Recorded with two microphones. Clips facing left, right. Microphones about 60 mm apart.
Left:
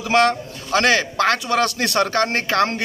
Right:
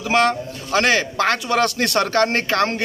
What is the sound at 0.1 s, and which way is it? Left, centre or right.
A man's voice, right.